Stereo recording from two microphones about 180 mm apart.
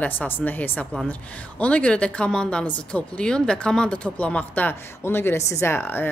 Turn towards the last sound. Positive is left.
turn(degrees=10)  # may be behind; listen again after turning